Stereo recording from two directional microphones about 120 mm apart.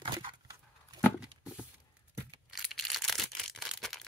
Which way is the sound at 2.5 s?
Centre (ahead or behind).